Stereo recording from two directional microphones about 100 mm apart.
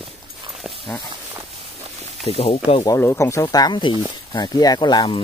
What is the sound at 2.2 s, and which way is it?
Speech, 80° left.